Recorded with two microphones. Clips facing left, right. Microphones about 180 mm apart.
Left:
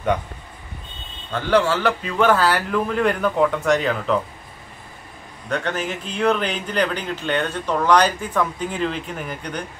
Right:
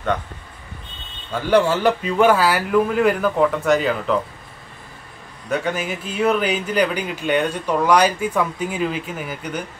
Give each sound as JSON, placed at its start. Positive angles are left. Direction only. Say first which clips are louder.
{"t": 1.3, "sound": "speech", "louder": "right 2 dB", "side_deg": -10}
{"t": 5.5, "sound": "speech", "louder": "right 2 dB", "side_deg": -10}